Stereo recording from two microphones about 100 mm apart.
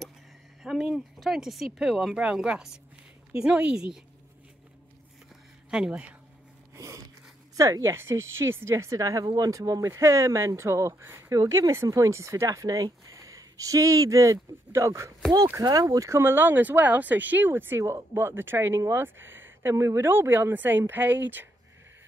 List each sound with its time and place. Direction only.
0.6 s speech: 5° right (ahead or behind)
5.7 s speech: 10° right (ahead or behind)
6.7 s a sound: 35° right (ahead or behind)
7.5 s a woman's voice: 35° right (ahead or behind)